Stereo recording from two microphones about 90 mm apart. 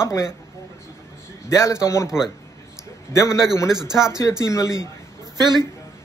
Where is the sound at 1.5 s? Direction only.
35° left (ahead or behind).